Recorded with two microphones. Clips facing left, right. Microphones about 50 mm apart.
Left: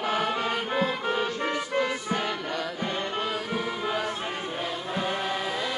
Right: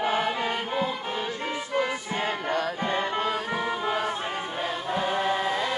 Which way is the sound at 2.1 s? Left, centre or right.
Right.